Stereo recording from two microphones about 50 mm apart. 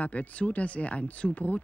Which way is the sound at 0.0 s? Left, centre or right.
Left.